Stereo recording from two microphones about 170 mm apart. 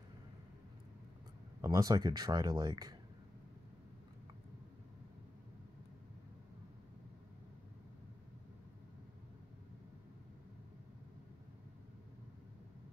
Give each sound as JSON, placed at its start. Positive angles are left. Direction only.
{"t": 1.6, "sound": "speech", "side_deg": -20}